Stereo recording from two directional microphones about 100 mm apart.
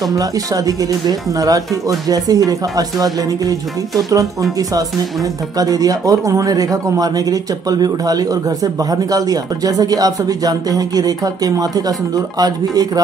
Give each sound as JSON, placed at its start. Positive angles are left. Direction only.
{"t": 0.1, "sound": "speech", "side_deg": -35}
{"t": 5.6, "sound": "speech", "side_deg": -40}